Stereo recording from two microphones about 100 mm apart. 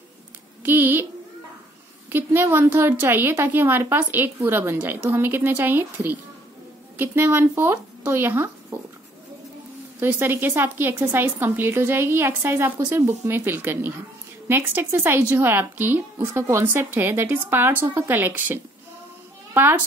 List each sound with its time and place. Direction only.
0.7 s a woman's voice: 20° right (ahead or behind)
2.1 s a woman's voice: 20° right (ahead or behind)
9.9 s a woman's voice: 20° right (ahead or behind)